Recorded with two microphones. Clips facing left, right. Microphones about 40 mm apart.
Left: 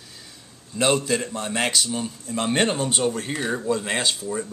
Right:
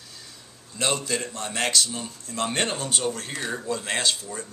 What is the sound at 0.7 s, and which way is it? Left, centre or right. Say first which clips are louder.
Speech: left 5 dB; centre.